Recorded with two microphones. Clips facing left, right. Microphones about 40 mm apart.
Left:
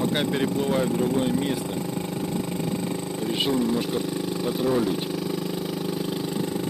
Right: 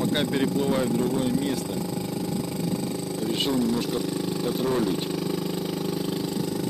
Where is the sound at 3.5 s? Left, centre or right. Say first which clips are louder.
Left 1 dB; left.